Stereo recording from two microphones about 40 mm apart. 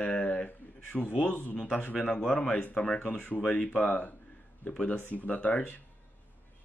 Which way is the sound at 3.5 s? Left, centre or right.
Left.